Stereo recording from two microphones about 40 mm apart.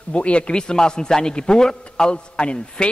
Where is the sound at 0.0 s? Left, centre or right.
Left.